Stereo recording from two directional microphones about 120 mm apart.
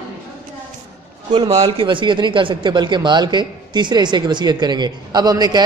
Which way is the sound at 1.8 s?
40° right (ahead or behind).